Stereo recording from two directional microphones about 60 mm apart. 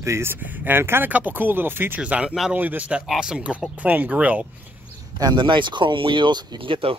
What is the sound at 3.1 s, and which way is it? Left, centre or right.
Speech, centre.